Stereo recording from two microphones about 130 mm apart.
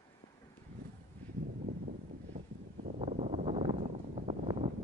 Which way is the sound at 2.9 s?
65° right (ahead or behind).